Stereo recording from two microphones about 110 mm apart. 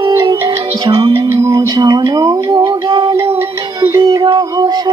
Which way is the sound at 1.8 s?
40° right (ahead or behind).